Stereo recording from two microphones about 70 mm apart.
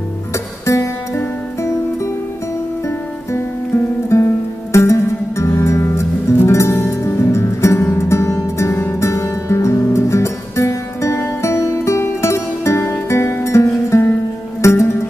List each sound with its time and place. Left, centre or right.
0.3 s music: left
3.3 s music: left